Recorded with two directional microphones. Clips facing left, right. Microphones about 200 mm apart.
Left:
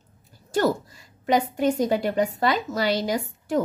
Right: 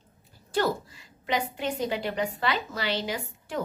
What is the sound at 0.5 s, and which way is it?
A woman's voice, 45° left (ahead or behind).